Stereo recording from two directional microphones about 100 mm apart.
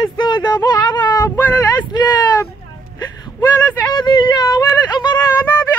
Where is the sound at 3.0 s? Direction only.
45° left (ahead or behind).